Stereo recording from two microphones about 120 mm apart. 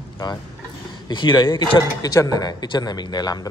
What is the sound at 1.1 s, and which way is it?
Speech, 40° left (ahead or behind).